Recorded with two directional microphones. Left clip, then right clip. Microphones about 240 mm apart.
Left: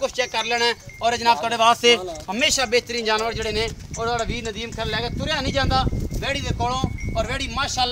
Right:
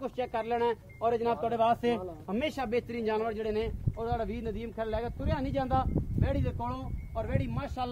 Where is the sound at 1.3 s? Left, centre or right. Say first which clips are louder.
Left 14 dB; right.